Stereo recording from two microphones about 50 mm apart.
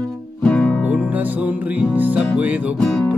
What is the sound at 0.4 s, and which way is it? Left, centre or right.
Music, centre.